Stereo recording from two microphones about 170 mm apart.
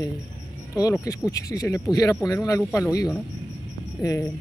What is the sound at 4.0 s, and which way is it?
Speech, 20° left (ahead or behind).